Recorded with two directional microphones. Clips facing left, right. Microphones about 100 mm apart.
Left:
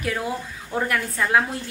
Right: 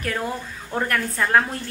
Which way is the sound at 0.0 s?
5° left (ahead or behind).